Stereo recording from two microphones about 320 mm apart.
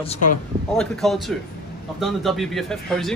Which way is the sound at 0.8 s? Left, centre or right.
Centre.